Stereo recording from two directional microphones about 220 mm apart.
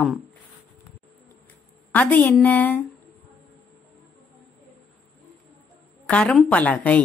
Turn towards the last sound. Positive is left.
turn(degrees=5)  # may be behind; listen again after turning